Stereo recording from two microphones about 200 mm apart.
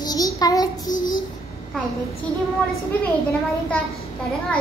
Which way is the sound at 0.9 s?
40° left (ahead or behind).